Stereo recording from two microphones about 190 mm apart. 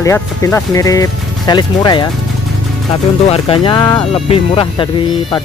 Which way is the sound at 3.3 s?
25° left (ahead or behind).